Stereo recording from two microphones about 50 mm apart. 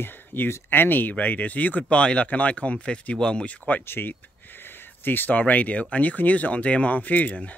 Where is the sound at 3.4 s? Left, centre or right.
Left.